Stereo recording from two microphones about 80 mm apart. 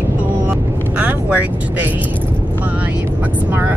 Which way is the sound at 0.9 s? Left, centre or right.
Centre.